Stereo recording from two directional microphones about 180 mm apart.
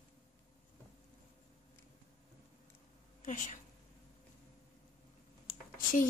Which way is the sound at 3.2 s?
45° left (ahead or behind).